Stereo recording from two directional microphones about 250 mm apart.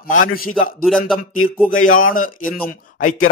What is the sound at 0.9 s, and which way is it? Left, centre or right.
Speech, centre.